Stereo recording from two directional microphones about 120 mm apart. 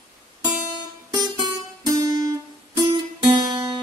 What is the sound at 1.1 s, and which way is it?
Music, 35° right (ahead or behind).